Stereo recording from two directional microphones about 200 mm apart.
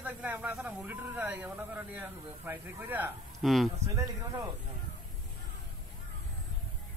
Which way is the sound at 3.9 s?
15° right (ahead or behind).